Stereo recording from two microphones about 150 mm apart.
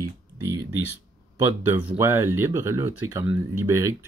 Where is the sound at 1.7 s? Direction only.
15° right (ahead or behind).